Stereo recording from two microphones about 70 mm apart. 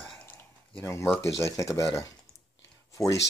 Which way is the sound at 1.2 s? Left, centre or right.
Left.